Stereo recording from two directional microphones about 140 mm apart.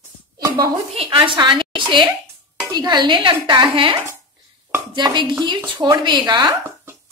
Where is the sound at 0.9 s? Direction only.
40° right (ahead or behind).